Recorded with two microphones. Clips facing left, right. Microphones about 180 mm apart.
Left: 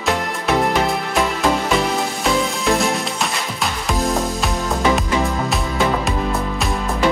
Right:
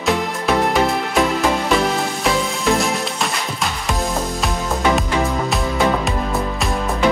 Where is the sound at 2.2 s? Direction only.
Centre (ahead or behind).